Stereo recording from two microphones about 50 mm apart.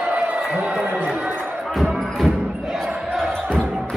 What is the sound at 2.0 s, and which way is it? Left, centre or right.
Music, centre.